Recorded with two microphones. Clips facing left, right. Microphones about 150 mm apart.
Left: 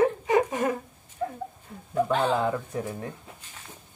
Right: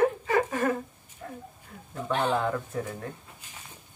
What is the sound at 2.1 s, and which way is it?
Speech, centre (ahead or behind).